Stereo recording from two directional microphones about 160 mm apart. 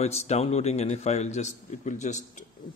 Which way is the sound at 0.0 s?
45° left (ahead or behind).